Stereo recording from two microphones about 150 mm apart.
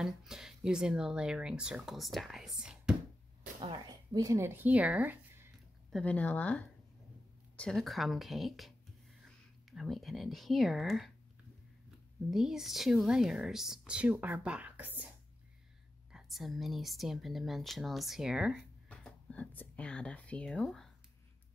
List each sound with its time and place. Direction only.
0.0 s speech: 5° right (ahead or behind)
3.6 s speech: 30° right (ahead or behind); by 5.5 s 15° right (ahead or behind)
5.9 s speech: 5° left (ahead or behind)
12.3 s speech: 5° right (ahead or behind)
16.1 s speech: 5° right (ahead or behind)
18.9 s speech: 10° left (ahead or behind)